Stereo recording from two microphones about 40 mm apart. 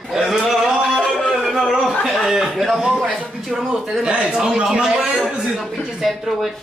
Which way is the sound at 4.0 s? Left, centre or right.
Right.